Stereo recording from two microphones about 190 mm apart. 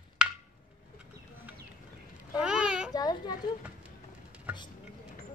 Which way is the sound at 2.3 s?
5° right (ahead or behind).